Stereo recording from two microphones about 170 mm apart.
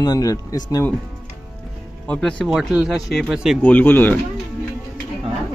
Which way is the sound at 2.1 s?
5° left (ahead or behind).